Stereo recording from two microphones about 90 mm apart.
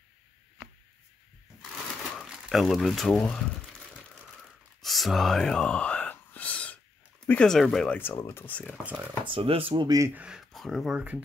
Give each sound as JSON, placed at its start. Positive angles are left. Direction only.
{"t": 2.2, "sound": "speech", "side_deg": 0}
{"t": 4.8, "sound": "whispering", "side_deg": 0}
{"t": 7.4, "sound": "speech", "side_deg": 5}
{"t": 8.1, "sound": "speech", "side_deg": 30}
{"t": 8.8, "sound": "speech", "side_deg": -15}
{"t": 9.2, "sound": "speech", "side_deg": -85}
{"t": 9.8, "sound": "speech", "side_deg": -35}
{"t": 10.1, "sound": "speech", "side_deg": -10}
{"t": 10.5, "sound": "speech", "side_deg": 0}
{"t": 11.0, "sound": "speech", "side_deg": -15}